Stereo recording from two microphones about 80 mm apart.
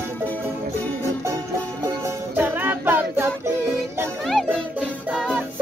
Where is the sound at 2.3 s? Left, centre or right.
Right.